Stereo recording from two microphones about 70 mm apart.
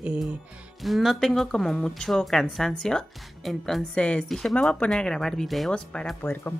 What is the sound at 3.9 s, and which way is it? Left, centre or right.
Speech, centre.